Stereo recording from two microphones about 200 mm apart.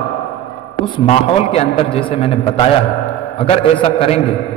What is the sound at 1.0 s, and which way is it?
A man's voice, 30° left (ahead or behind).